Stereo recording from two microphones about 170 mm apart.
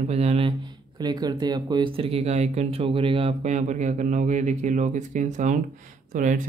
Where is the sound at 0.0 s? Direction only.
40° right (ahead or behind).